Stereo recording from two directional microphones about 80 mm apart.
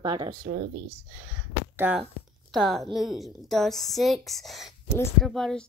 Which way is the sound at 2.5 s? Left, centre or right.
Centre.